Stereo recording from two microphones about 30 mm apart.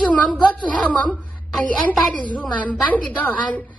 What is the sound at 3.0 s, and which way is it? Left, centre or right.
Speech, left.